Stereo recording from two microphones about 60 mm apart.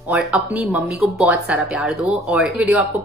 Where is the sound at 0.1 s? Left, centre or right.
Right.